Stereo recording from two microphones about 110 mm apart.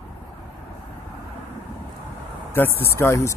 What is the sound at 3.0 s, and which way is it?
Speech, 25° left (ahead or behind).